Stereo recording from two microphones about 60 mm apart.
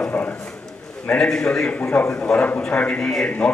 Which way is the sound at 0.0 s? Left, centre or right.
Left.